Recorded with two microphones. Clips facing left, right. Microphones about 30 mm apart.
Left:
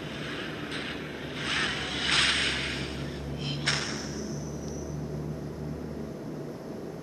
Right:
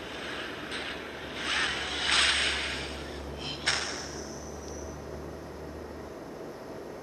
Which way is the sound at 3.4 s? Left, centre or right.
Centre.